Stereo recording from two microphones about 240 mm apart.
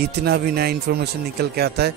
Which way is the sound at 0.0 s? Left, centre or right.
Right.